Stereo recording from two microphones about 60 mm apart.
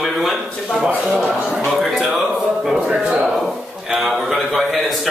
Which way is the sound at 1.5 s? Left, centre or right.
Centre.